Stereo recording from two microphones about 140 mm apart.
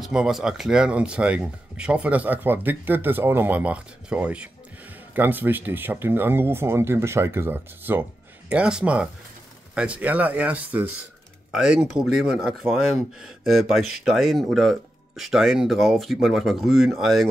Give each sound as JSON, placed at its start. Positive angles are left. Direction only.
{"t": 0.0, "sound": "speech", "side_deg": -5}